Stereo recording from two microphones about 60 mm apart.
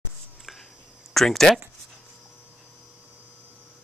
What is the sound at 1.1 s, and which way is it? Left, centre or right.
Speech, centre.